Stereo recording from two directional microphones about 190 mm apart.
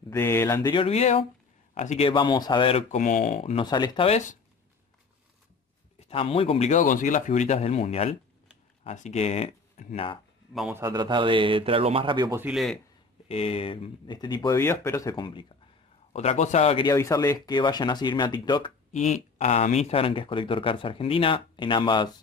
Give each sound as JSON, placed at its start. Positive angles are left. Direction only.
{"t": 0.1, "sound": "speech", "side_deg": 15}
{"t": 0.8, "sound": "speech", "side_deg": 35}
{"t": 5.9, "sound": "speech", "side_deg": 30}
{"t": 10.7, "sound": "a man's voice", "side_deg": -15}
{"t": 12.4, "sound": "a man's voice", "side_deg": -5}
{"t": 13.3, "sound": "speech", "side_deg": 30}
{"t": 16.8, "sound": "speech", "side_deg": 15}
{"t": 18.9, "sound": "speech", "side_deg": 40}